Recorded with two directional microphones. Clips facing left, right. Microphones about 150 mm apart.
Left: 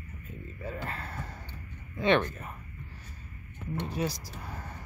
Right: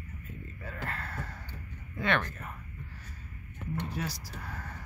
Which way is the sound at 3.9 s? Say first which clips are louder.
Left 5 dB; 15° left (ahead or behind).